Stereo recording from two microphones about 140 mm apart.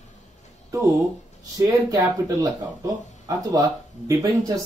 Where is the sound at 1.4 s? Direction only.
25° right (ahead or behind).